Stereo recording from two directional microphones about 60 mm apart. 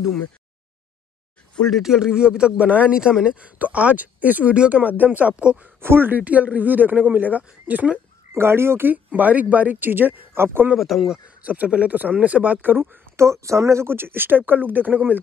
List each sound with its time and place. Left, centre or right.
1.7 s speech: centre; by 5.3 s right
5.4 s speech: centre
5.8 s speech: right
6.1 s speech: right
8.4 s speech: right
8.9 s speech: right
10.8 s speech: centre
11.4 s speech: right
13.1 s speech: right